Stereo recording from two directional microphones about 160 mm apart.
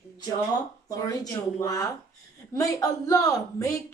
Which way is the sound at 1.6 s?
25° left (ahead or behind).